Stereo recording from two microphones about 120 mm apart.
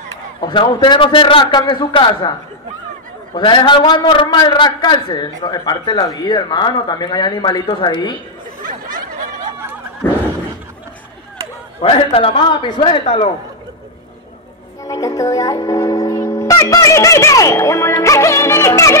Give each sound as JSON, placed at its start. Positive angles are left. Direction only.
{"t": 0.4, "sound": "a man's voice", "side_deg": 40}
{"t": 3.3, "sound": "a man's voice", "side_deg": 40}
{"t": 11.8, "sound": "a man's voice", "side_deg": 50}
{"t": 14.9, "sound": "speech", "side_deg": 30}